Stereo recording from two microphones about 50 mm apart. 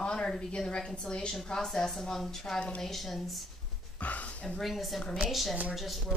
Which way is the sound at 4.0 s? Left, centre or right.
Left.